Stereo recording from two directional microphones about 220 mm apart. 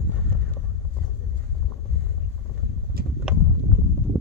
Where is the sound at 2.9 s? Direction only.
45° right (ahead or behind).